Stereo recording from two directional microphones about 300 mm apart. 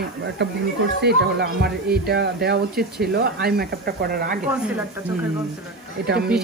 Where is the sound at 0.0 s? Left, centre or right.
Right.